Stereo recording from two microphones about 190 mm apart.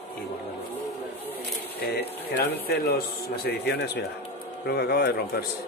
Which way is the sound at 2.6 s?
55° left (ahead or behind).